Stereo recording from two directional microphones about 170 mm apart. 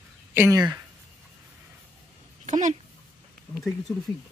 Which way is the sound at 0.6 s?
25° right (ahead or behind).